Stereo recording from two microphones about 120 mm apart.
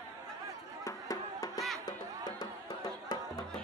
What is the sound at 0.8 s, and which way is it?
Music, 30° left (ahead or behind).